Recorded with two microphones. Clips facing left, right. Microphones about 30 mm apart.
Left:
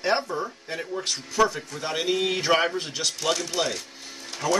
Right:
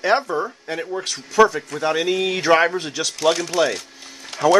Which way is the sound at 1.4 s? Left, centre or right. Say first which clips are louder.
Right 7 dB; right.